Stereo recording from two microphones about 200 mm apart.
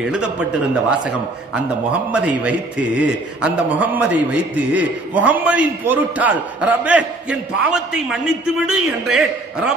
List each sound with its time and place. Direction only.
0.0 s a man's voice: 5° right (ahead or behind)
1.5 s a man's voice: 5° right (ahead or behind)